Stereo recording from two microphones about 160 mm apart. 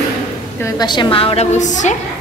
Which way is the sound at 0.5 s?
20° left (ahead or behind).